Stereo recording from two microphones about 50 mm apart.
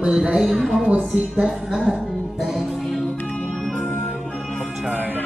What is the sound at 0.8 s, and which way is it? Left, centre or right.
Speech, right.